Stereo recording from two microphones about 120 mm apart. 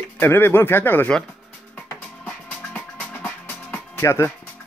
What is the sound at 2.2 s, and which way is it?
Music, 10° left (ahead or behind).